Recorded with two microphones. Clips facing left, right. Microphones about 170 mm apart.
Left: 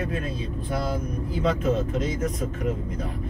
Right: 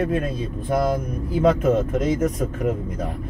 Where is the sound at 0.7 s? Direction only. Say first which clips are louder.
Right 7 dB; 50° right (ahead or behind).